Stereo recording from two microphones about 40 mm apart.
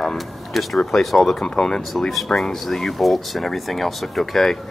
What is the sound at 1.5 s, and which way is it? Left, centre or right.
Speech, centre.